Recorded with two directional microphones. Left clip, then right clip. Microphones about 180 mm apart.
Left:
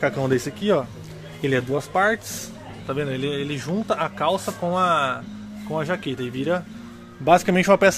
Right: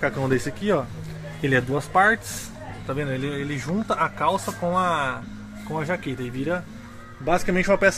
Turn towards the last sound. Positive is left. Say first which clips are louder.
# left 3 dB
turn(degrees=25)  # may be behind; listen again after turning